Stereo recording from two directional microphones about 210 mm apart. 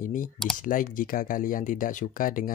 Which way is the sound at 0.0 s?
40° left (ahead or behind).